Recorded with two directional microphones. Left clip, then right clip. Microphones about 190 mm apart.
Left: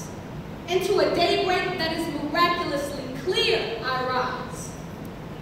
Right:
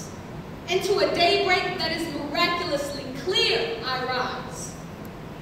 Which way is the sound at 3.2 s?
25° right (ahead or behind).